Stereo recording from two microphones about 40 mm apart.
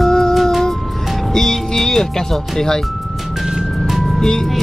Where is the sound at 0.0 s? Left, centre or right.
Centre.